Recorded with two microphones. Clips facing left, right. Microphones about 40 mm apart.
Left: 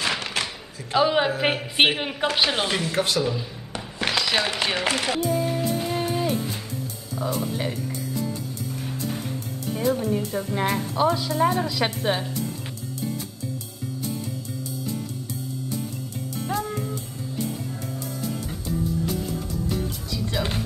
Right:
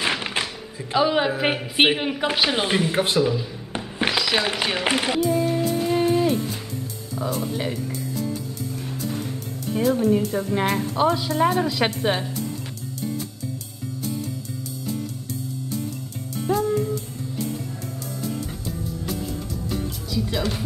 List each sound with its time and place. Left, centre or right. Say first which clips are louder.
0.0 s music: right 2 dB; right
0.9 s a woman's voice: even; centre
2.7 s speech: right 3 dB; centre
3.2 s speech: right 4 dB; centre
4.2 s a sound: even; centre
4.5 s a woman's voice: right 1 dB; centre
4.8 s speech: right 2 dB; centre
5.5 s music: right 3 dB; centre
7.2 s speech: right 1 dB; centre
8.8 s music: right 1 dB; centre
10.3 s speech: right 2 dB; centre
16.3 s music: right 6 dB; centre
18.2 s music: right 3 dB; centre